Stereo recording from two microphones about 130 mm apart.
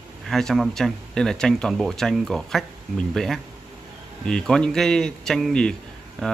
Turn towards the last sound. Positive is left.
turn(degrees=5)  # may be behind; listen again after turning